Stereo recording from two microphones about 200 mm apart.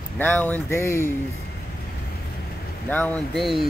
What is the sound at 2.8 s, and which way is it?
Speech, 10° left (ahead or behind).